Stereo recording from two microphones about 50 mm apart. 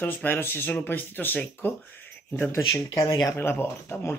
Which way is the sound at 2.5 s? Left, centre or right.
Left.